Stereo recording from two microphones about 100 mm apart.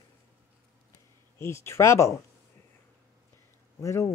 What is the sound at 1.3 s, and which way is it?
Speech, 30° left (ahead or behind).